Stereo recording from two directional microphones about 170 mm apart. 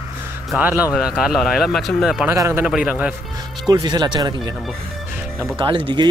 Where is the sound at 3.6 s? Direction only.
25° right (ahead or behind).